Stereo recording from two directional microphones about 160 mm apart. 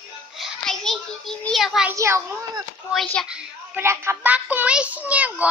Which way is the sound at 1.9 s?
20° right (ahead or behind).